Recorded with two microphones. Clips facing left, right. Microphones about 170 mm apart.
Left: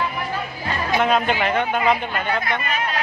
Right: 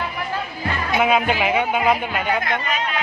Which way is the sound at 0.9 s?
5° right (ahead or behind).